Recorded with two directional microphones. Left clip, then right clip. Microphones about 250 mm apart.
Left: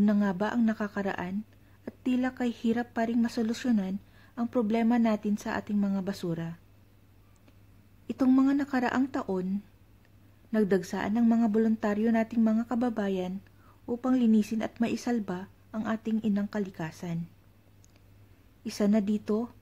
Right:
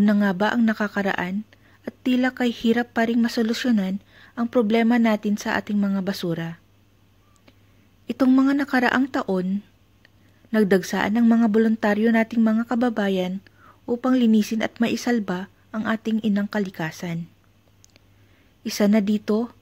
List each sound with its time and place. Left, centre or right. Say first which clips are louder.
0.0 s speech: right 7 dB; centre
8.1 s speech: right 6 dB; centre
18.6 s speech: right 7 dB; centre